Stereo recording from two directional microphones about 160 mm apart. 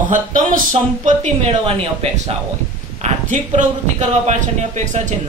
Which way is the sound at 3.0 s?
50° right (ahead or behind).